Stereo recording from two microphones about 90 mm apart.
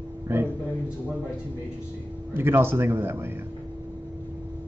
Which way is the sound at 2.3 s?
25° right (ahead or behind).